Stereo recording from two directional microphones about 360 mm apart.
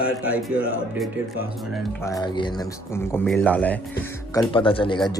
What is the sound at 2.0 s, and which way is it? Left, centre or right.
Speech, centre.